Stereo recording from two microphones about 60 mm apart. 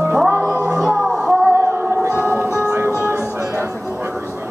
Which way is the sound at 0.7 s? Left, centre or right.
Centre.